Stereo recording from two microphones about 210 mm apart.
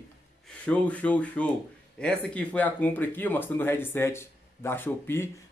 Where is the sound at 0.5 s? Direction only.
5° left (ahead or behind).